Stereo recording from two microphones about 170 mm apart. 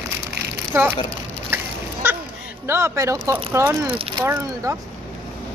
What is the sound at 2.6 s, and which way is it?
Speech, 15° right (ahead or behind).